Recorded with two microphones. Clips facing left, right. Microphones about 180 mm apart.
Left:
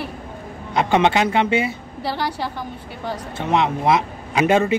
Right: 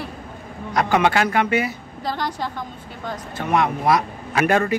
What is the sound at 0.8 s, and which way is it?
Speech, 25° left (ahead or behind).